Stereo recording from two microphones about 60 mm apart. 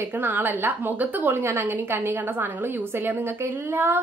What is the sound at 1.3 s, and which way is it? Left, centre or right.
A woman's voice, right.